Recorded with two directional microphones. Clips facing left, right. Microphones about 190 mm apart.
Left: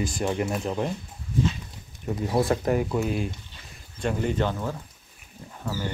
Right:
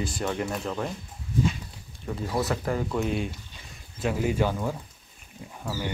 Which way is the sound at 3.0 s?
Centre (ahead or behind).